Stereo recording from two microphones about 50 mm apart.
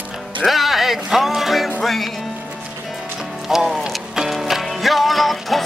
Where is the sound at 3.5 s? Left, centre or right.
Centre.